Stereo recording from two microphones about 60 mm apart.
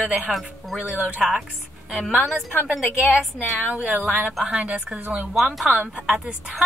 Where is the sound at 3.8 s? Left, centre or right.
Right.